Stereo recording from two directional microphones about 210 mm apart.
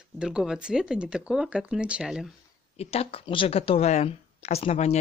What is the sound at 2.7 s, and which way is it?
Speech, 30° left (ahead or behind).